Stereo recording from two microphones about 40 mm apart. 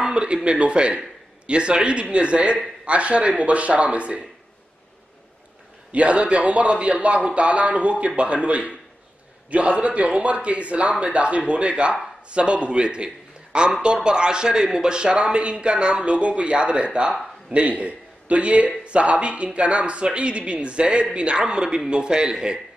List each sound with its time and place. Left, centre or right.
0.0 s a man's voice: right
5.9 s a man's voice: right